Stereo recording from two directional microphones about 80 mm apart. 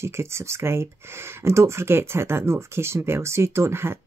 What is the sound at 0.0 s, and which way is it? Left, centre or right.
Speech, right.